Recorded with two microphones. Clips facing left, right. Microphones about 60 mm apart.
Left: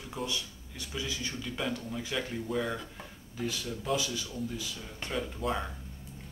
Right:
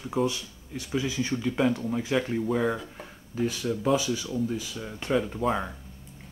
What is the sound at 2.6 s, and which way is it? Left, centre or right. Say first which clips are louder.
Speech: right 7 dB; centre.